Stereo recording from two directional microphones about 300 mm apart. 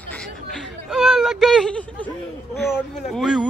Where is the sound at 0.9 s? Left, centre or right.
Centre.